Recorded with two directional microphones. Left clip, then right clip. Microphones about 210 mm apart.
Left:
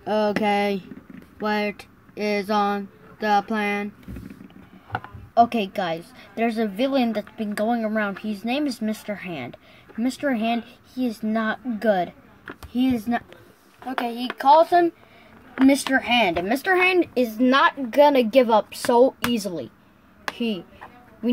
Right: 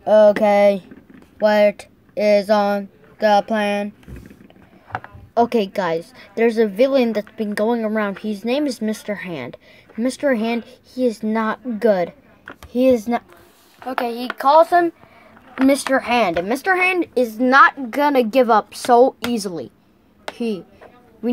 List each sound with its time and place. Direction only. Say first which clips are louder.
0.0 s speech: right 10 dB; 5° right (ahead or behind)
4.9 s speech: even; 15° right (ahead or behind)
13.8 s speech: right 4 dB; centre (ahead or behind)